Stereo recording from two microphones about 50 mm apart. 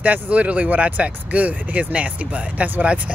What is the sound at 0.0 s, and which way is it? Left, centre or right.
Speech, right.